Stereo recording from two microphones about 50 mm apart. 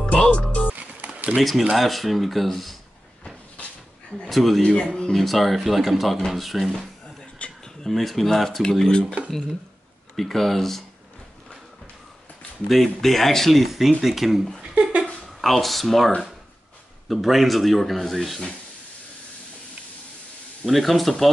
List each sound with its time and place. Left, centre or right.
0.0 s music: left
0.7 s music: right
1.8 s speech: centre
4.3 s speech: centre
7.3 s a sound: left
7.8 s speech: centre
10.1 s speech: centre
12.6 s speech: centre
14.6 s a sound: right
15.2 s speech: centre
17.1 s speech: centre
20.6 s speech: centre